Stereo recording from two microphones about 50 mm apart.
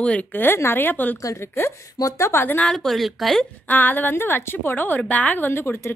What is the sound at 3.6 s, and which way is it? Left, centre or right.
A woman's voice, left.